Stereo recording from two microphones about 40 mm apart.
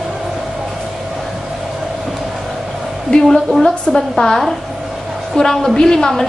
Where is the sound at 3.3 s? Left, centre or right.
Centre.